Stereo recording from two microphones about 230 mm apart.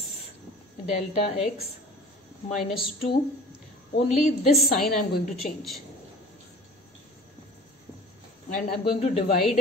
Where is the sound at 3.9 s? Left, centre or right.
Left.